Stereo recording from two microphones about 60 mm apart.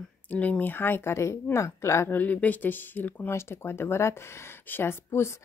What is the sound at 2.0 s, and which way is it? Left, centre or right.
Speech, left.